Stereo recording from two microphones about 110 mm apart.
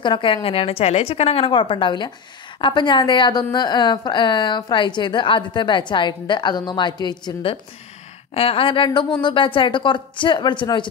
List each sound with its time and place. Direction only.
0.0 s a woman's voice: 50° left (ahead or behind)
8.4 s a woman's voice: 55° left (ahead or behind)